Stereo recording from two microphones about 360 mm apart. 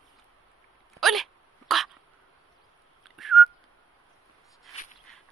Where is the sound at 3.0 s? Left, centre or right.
Centre.